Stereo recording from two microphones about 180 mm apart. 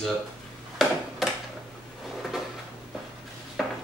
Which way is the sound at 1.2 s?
Centre (ahead or behind).